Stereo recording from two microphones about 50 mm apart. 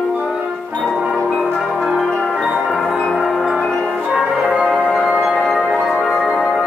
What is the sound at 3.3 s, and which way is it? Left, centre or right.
Tubular bells, centre.